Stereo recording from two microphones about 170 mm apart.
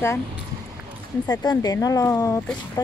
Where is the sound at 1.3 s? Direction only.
25° left (ahead or behind).